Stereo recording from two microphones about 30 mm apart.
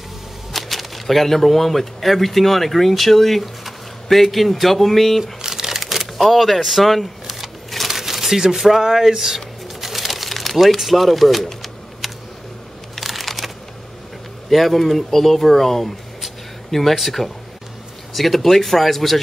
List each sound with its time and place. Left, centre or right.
0.5 s speech: centre
5.2 s shuffling cards: centre
5.8 s speech: centre
7.2 s a sound: centre
7.9 s crumpling: centre
8.5 s pigeon: centre
10.8 s speech: centre
13.0 s computer keyboard: centre
14.5 s speech: centre
16.9 s speech: centre